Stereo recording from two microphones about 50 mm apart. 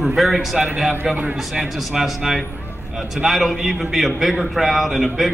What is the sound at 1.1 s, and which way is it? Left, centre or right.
Speech, right.